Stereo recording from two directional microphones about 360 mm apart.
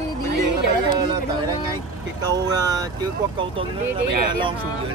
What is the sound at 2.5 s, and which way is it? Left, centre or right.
Speech, centre.